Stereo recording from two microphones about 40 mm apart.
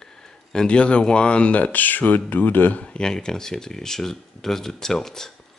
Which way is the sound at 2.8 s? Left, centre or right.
Left.